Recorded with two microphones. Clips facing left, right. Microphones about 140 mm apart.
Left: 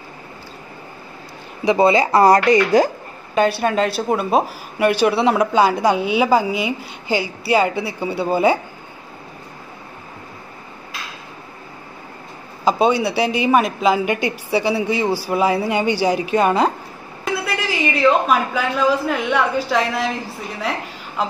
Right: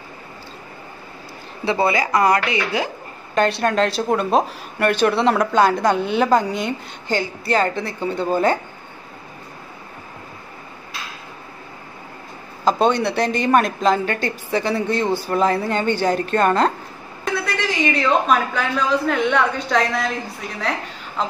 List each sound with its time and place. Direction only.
1.6 s speech: 20° left (ahead or behind); by 2.9 s 40° left (ahead or behind)
3.3 s a woman's voice: 5° left (ahead or behind)
12.6 s a woman's voice: 5° left (ahead or behind)
21.2 s a woman's voice: 5° left (ahead or behind)